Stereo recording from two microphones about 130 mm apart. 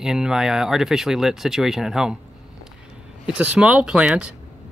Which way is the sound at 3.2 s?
10° right (ahead or behind).